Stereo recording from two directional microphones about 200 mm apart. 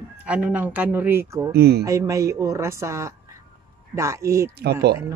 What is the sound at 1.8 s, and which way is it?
Speech, 15° right (ahead or behind).